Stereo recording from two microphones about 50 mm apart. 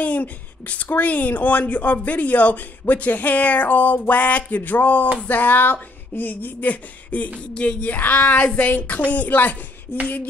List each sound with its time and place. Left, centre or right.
0.0 s speech: left
7.5 s a sound: left
7.9 s speech: left